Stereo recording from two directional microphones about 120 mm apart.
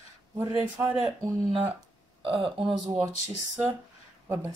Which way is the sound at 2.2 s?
50° right (ahead or behind).